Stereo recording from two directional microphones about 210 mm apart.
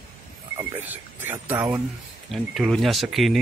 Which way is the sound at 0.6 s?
10° right (ahead or behind).